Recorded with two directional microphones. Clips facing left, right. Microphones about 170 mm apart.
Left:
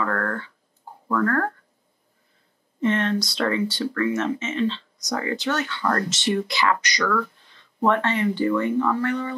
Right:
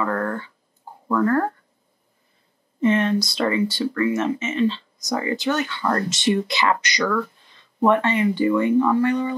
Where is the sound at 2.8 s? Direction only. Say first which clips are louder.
Right 3 dB; 10° right (ahead or behind).